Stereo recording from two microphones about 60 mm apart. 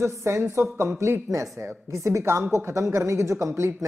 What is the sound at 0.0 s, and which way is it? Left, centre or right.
Speech, right.